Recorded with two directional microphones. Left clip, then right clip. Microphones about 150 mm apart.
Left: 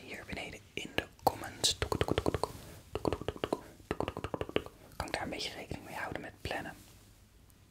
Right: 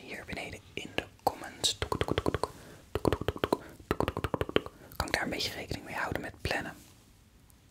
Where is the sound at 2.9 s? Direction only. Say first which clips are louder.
Right 5 dB; 20° right (ahead or behind).